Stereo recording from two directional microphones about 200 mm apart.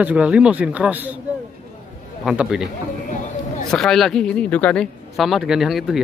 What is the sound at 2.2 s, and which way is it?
Speech, 5° right (ahead or behind).